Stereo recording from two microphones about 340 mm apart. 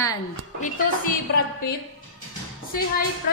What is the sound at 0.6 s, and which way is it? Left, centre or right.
Speech, left.